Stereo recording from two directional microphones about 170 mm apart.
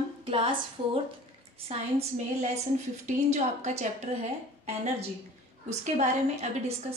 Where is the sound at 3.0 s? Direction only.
45° right (ahead or behind).